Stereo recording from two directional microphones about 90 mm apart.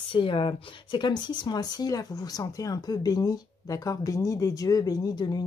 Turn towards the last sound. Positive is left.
turn(degrees=45)  # may be behind; listen again after turning